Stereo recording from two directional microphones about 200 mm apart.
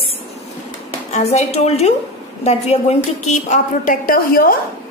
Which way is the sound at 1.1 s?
30° left (ahead or behind).